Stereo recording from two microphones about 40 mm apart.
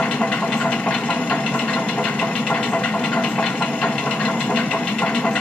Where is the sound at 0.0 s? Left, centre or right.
Left.